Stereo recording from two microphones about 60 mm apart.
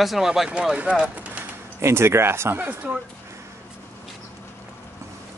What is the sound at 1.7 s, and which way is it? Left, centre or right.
Speech, right.